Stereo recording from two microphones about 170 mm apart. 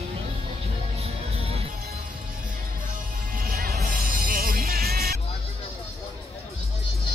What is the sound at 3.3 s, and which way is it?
Music, 60° right (ahead or behind).